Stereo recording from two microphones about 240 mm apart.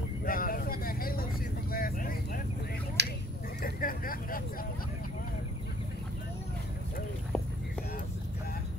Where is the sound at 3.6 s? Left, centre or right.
Left.